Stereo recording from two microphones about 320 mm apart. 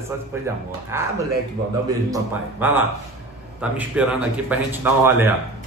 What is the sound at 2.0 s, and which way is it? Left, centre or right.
A man's voice, centre.